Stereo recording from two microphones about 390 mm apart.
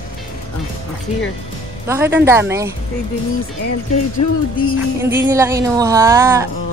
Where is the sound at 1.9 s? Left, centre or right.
Centre.